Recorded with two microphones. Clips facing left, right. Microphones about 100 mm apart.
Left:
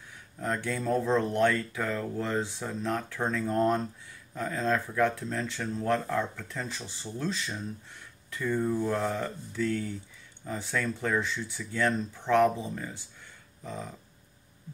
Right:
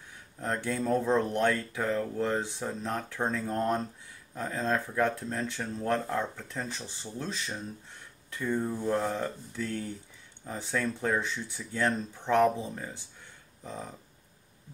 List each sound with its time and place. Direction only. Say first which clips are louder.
0.4 s speech: even; 20° right (ahead or behind)
4.4 s speech: left 1 dB; 25° right (ahead or behind)